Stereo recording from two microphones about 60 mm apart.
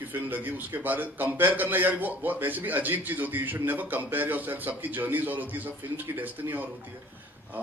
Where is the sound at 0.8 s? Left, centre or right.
Right.